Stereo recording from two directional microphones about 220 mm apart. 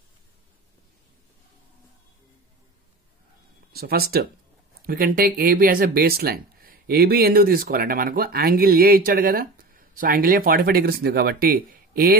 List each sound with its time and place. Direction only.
3.7 s speech: 45° right (ahead or behind)